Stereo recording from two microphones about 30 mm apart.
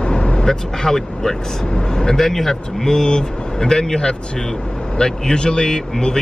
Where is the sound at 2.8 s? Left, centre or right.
Left.